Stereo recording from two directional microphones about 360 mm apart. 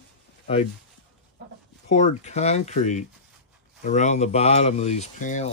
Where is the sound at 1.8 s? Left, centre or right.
Centre.